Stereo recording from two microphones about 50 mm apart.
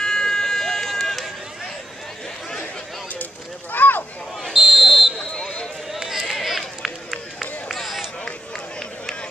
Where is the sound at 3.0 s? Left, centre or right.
Left.